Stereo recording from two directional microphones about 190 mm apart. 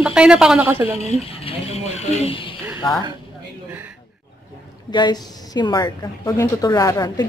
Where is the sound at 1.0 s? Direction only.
35° left (ahead or behind).